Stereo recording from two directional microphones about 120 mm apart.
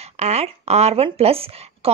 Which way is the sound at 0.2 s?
65° right (ahead or behind).